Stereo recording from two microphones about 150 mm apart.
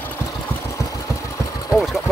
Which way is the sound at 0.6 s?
20° left (ahead or behind).